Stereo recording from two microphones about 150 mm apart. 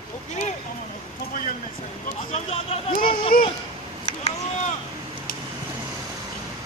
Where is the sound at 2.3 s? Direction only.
40° left (ahead or behind).